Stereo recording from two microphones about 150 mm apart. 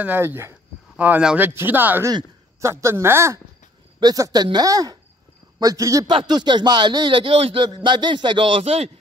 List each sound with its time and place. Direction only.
0.0 s speech: 15° right (ahead or behind); by 8.9 s 40° right (ahead or behind)